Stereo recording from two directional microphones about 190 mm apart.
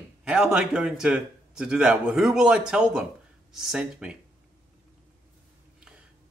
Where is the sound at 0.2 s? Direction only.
5° right (ahead or behind).